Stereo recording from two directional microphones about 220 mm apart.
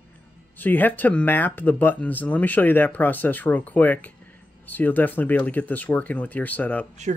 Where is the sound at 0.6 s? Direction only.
10° left (ahead or behind).